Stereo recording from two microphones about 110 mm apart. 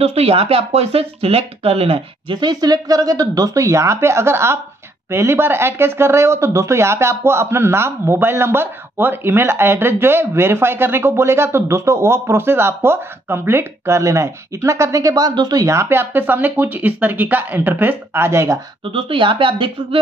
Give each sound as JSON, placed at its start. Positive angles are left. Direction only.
{"t": 0.0, "sound": "speech", "side_deg": -70}
{"t": 18.9, "sound": "speech", "side_deg": -55}